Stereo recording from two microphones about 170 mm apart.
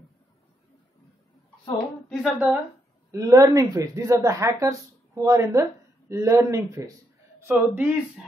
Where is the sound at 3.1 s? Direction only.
20° right (ahead or behind).